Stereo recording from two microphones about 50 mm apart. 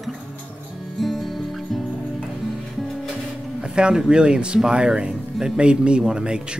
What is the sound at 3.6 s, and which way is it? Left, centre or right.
Speech, centre.